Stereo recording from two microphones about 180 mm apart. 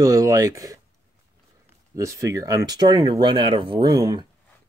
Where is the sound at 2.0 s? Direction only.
15° right (ahead or behind).